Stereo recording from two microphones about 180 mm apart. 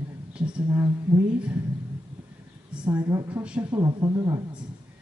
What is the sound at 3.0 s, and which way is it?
Speech, 20° right (ahead or behind).